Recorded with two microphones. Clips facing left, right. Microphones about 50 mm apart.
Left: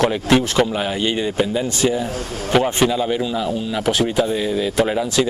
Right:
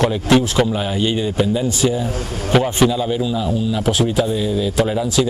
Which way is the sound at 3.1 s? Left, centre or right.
Left.